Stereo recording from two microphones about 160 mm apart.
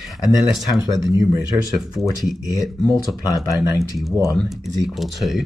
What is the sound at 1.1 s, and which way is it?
Speech, 20° right (ahead or behind).